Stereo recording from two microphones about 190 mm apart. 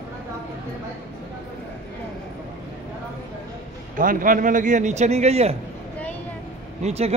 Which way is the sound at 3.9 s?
45° right (ahead or behind).